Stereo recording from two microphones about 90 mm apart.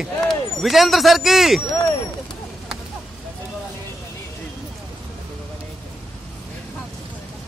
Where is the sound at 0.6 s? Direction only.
Centre (ahead or behind).